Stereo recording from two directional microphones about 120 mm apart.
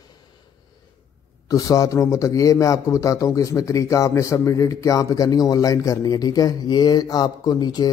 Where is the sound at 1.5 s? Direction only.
30° left (ahead or behind).